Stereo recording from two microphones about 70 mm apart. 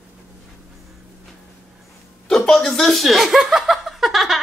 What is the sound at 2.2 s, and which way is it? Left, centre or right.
Chuckle, centre.